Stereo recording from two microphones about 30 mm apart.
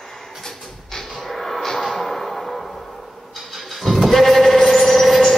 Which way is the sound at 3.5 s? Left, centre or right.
Centre.